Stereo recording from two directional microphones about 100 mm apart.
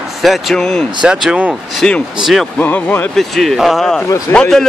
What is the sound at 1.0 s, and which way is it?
Speech, 10° right (ahead or behind).